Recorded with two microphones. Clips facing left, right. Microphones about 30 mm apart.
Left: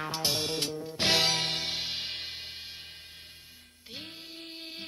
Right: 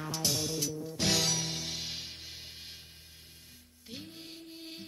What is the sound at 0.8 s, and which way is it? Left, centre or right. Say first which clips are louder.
Music: left 5 dB; left.